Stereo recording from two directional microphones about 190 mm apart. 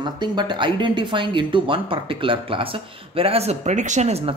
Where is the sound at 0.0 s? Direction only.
25° right (ahead or behind).